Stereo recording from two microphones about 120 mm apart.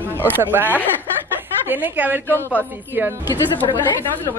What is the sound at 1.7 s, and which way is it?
Speech, 15° right (ahead or behind).